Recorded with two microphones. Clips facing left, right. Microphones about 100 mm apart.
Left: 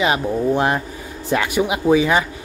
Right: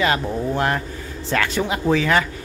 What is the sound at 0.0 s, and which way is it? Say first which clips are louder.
Speech: left 2 dB; 15° left (ahead or behind).